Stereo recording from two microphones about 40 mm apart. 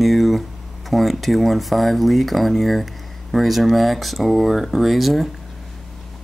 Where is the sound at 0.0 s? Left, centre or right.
Centre.